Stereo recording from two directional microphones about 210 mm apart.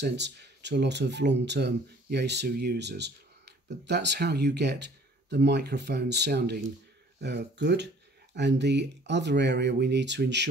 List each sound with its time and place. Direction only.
0.0 s speech: 55° right (ahead or behind)